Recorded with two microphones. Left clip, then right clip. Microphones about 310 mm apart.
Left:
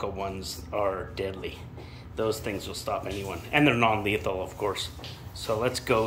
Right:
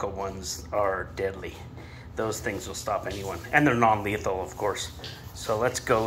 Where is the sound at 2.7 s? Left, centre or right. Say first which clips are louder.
Right 2 dB; centre.